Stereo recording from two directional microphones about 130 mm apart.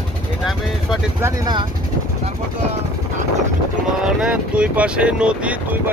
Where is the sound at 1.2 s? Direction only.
25° right (ahead or behind).